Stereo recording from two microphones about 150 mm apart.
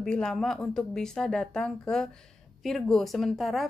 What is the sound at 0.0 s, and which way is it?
Speech, 5° left (ahead or behind).